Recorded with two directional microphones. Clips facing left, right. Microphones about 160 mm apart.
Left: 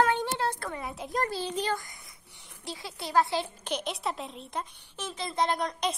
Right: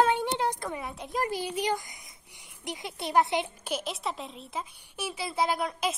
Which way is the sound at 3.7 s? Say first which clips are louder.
Left 4 dB; centre (ahead or behind).